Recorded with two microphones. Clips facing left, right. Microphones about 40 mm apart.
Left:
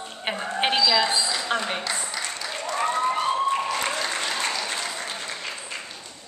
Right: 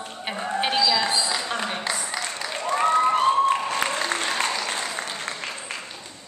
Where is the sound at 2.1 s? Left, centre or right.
Centre.